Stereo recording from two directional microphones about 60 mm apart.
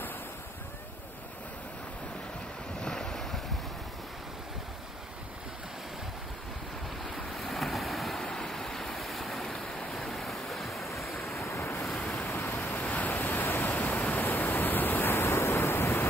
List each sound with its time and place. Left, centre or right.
2.8 s wind: centre
7.3 s waves: centre
11.2 s waves: left
12.0 s waves: left